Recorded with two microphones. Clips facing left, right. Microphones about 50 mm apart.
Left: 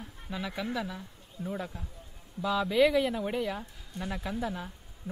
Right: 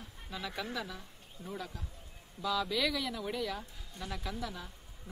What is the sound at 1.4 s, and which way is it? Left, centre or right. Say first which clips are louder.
Speech: left 6 dB; left.